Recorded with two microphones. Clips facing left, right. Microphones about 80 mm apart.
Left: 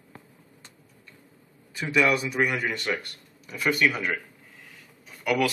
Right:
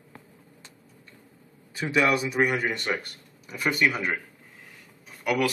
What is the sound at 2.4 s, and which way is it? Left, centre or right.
Speech, centre.